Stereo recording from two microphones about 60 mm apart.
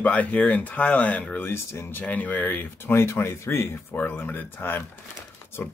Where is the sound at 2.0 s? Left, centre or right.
Left.